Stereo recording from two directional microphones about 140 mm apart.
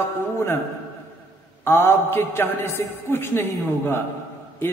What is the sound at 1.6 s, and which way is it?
Mantra, 15° left (ahead or behind).